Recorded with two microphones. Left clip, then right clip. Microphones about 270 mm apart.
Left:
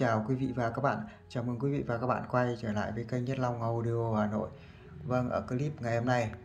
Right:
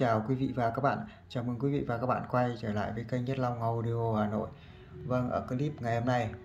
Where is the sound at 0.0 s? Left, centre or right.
Centre.